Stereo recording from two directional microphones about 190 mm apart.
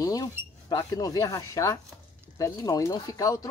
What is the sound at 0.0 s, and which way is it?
Speech, 20° left (ahead or behind).